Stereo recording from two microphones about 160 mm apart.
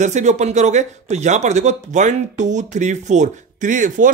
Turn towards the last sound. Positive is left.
turn(degrees=-55)  # may be behind; listen again after turning